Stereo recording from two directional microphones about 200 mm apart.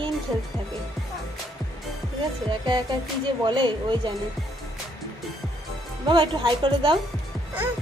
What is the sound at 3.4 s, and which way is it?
Speech, 25° right (ahead or behind).